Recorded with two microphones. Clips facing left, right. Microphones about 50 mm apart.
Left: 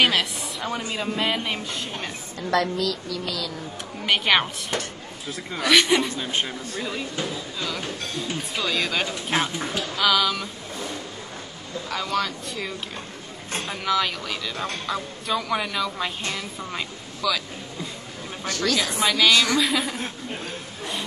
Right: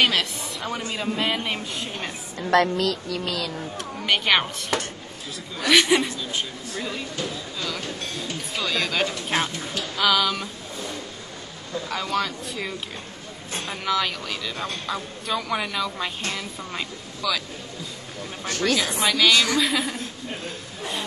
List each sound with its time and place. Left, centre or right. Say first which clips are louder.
0.0 s speech: left 1 dB; centre
2.5 s speech: right 3 dB; right
4.0 s speech: left 1 dB; centre
6.1 s speech: left 3 dB; left
8.5 s speech: right 1 dB; centre
11.9 s speech: left 1 dB; centre
18.8 s speech: even; centre